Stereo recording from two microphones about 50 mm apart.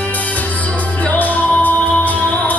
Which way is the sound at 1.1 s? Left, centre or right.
Left.